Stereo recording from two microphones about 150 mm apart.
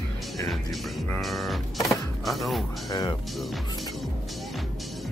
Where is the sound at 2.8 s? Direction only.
25° left (ahead or behind).